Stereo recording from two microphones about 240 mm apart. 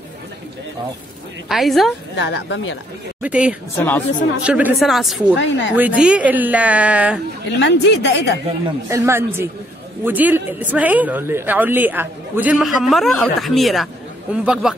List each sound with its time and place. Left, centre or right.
1.5 s a woman's voice: centre
2.1 s a woman's voice: left
3.2 s a woman's voice: centre
3.7 s speech: centre
4.4 s a woman's voice: centre
5.4 s a woman's voice: left
5.8 s a woman's voice: centre
7.4 s a woman's voice: left
8.8 s a man's voice: centre